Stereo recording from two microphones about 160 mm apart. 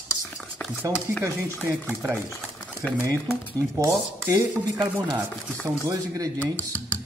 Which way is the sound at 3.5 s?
20° right (ahead or behind).